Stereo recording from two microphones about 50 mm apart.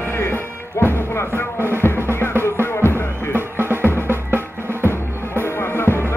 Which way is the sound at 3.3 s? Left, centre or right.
Right.